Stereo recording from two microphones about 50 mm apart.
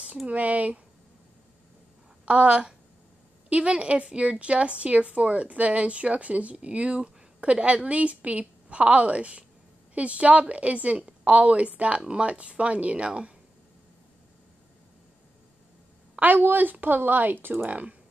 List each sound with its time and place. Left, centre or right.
0.3 s a woman's voice: right
2.2 s a woman's voice: right
16.2 s a woman's voice: right